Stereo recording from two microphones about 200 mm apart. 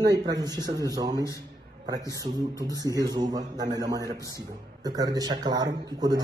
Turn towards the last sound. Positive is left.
turn(degrees=-20)  # may be behind; listen again after turning